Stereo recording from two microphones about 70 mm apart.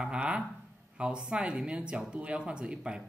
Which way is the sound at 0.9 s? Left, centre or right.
Centre.